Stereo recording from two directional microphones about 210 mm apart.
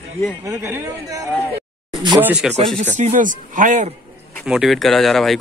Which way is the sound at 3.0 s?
35° right (ahead or behind).